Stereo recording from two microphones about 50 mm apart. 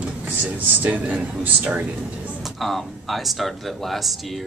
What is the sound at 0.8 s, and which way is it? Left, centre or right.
A man's voice, right.